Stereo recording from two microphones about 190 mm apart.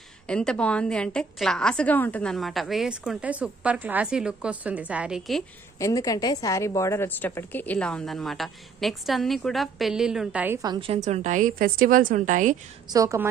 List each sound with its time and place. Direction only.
0.3 s a woman's voice: 5° left (ahead or behind)
5.8 s a woman's voice: 15° left (ahead or behind); by 12.5 s 40° right (ahead or behind)
12.8 s a woman's voice: 20° right (ahead or behind)